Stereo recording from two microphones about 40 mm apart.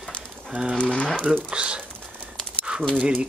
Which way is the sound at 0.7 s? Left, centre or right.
Left.